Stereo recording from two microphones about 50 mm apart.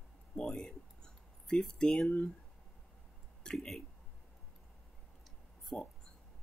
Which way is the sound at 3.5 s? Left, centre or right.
Centre.